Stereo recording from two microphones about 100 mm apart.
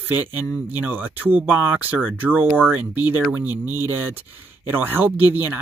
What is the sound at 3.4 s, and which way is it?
Speech, 20° right (ahead or behind).